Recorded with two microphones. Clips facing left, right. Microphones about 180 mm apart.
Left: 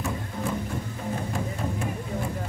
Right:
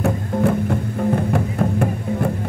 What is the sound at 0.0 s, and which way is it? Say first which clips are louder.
Music: right 11 dB; 60° right (ahead or behind).